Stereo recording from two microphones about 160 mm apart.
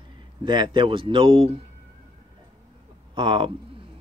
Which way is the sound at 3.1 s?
30° right (ahead or behind).